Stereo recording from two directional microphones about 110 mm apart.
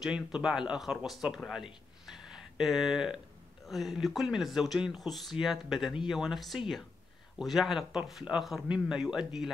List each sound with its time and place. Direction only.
0.0 s speech: 5° right (ahead or behind)